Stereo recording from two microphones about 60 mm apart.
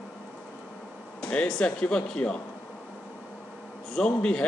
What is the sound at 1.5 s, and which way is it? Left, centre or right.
Speech, centre.